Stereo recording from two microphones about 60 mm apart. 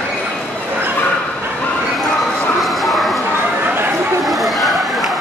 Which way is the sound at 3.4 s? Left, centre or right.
Right.